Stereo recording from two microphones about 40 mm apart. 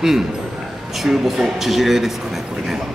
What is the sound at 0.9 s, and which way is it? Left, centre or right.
Speech, centre.